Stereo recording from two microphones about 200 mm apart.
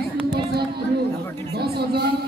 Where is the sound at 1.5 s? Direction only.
55° right (ahead or behind).